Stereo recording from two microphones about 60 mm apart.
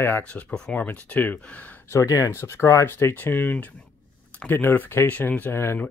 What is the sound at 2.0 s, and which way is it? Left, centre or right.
Speech, left.